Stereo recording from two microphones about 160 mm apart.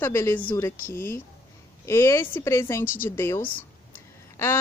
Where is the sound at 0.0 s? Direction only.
15° left (ahead or behind).